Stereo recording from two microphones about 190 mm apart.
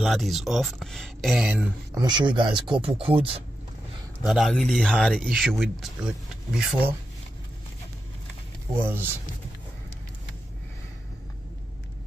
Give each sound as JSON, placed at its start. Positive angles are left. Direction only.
{"t": 0.0, "sound": "speech", "side_deg": 0}
{"t": 2.0, "sound": "speech", "side_deg": -25}
{"t": 4.3, "sound": "speech", "side_deg": 0}
{"t": 8.7, "sound": "speech", "side_deg": -10}